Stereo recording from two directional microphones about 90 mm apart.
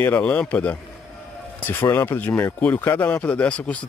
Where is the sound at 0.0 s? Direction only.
20° left (ahead or behind).